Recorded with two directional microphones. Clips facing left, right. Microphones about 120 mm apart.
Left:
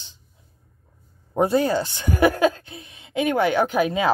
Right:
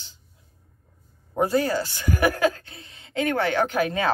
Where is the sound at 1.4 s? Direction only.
20° left (ahead or behind).